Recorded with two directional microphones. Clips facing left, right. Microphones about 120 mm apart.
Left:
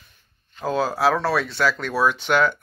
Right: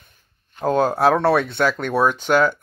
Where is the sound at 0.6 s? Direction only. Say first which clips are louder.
Right 4 dB; 55° right (ahead or behind).